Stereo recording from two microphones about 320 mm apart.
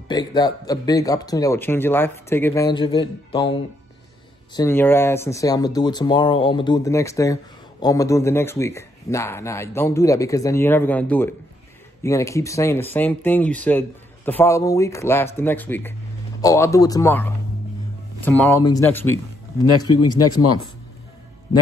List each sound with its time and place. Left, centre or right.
0.1 s a man's voice: centre
4.6 s a man's voice: centre
20.2 s speech: left